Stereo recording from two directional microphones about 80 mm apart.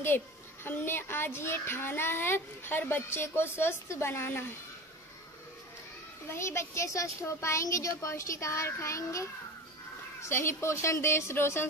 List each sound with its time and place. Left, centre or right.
0.7 s a child's voice: left
6.3 s speech: left